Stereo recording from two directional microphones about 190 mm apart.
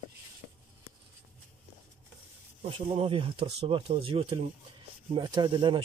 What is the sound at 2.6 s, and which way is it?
Speech, 30° right (ahead or behind).